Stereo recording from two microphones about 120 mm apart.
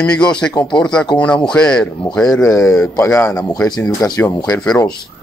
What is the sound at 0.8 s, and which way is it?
Speech, 5° left (ahead or behind).